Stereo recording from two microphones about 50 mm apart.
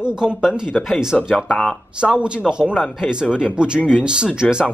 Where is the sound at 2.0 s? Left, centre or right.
Centre.